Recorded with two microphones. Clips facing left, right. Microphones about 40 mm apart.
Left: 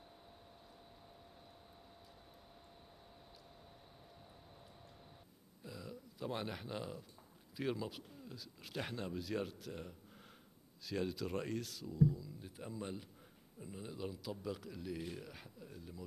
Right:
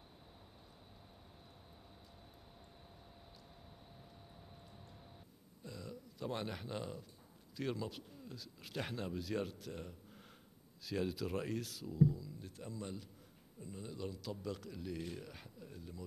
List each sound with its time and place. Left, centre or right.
5.6 s a sound: centre
7.5 s speech: centre
12.4 s speech: centre